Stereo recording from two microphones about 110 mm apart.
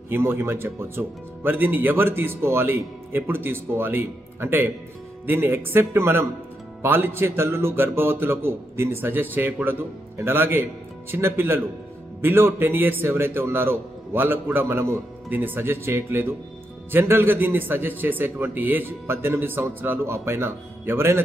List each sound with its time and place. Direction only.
0.1 s speech: 20° right (ahead or behind)